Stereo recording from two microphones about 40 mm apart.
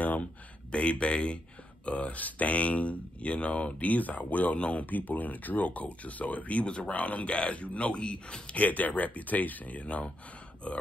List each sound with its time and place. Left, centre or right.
0.7 s speech: left
8.5 s speech: left